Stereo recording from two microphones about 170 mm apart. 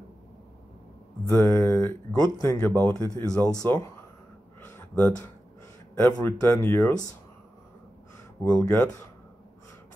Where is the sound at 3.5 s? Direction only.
20° left (ahead or behind).